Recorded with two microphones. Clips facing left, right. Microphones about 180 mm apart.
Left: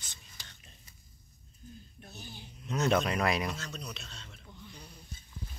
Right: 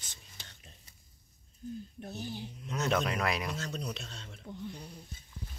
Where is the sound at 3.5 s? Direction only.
45° right (ahead or behind).